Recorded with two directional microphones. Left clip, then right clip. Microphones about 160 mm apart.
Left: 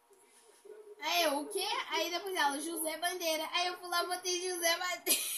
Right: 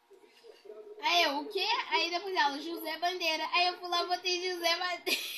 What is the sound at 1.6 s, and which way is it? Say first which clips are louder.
A woman's voice: right 8 dB; 35° left (ahead or behind).